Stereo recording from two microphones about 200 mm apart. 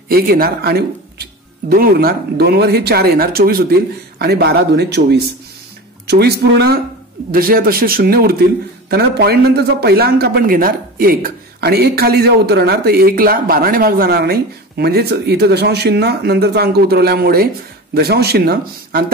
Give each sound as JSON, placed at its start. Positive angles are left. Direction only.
{"t": 0.1, "sound": "a man's voice", "side_deg": -50}